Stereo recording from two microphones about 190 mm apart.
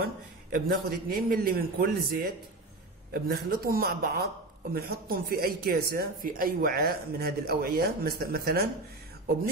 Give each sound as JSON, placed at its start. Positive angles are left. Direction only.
{"t": 0.0, "sound": "speech", "side_deg": -50}